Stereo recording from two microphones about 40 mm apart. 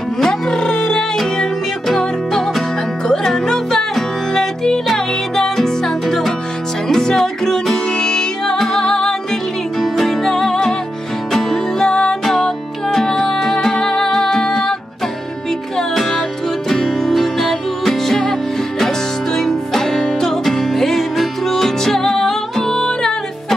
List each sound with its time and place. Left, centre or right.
0.2 s music: centre
15.9 s music: centre
19.3 s music: centre